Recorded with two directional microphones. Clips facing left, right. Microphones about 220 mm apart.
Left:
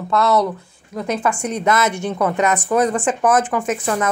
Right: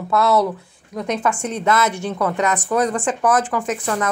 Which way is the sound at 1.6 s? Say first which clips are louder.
Left 1 dB; 20° left (ahead or behind).